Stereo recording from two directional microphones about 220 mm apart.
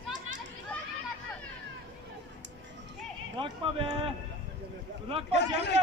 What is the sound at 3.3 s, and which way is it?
Clip-clop, 25° right (ahead or behind).